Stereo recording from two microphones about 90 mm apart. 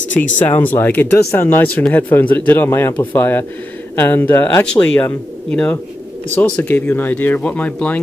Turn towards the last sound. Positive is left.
turn(degrees=15)  # may be behind; listen again after turning